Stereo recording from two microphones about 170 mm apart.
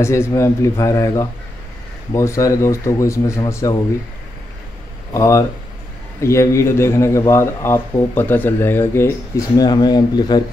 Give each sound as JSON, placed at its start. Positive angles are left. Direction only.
{"t": 0.0, "sound": "a man's voice", "side_deg": 15}
{"t": 5.1, "sound": "a man's voice", "side_deg": 20}
{"t": 9.6, "sound": "speech", "side_deg": 25}